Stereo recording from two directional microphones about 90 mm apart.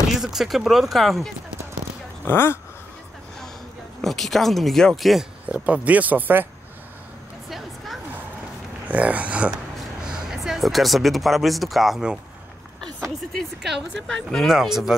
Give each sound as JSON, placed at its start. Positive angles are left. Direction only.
{"t": 0.1, "sound": "speech", "side_deg": -5}
{"t": 2.2, "sound": "speech", "side_deg": 25}
{"t": 4.0, "sound": "speech", "side_deg": 5}
{"t": 5.5, "sound": "speech", "side_deg": -15}
{"t": 7.4, "sound": "a sound", "side_deg": 0}
{"t": 8.8, "sound": "speech", "side_deg": -15}
{"t": 10.0, "sound": "speech", "side_deg": -5}
{"t": 13.3, "sound": "speech", "side_deg": 0}